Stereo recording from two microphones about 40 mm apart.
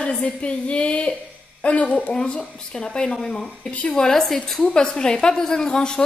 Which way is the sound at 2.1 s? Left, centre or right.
Left.